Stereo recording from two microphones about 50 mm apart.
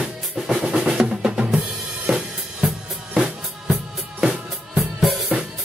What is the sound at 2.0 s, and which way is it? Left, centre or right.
Drum kit, centre.